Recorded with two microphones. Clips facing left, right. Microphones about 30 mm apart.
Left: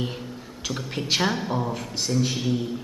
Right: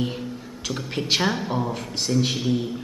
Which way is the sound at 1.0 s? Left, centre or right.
Centre.